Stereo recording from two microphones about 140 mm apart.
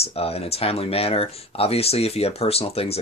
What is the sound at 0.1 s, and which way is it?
Speech, 45° left (ahead or behind).